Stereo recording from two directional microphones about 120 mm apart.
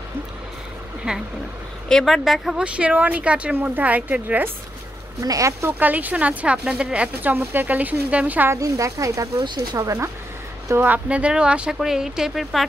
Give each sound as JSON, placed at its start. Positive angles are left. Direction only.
{"t": 1.1, "sound": "speech", "side_deg": -5}
{"t": 1.9, "sound": "speech", "side_deg": 5}
{"t": 5.2, "sound": "speech", "side_deg": -30}
{"t": 8.5, "sound": "speech", "side_deg": -30}